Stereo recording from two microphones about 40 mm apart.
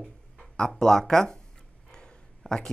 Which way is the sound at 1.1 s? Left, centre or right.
Centre.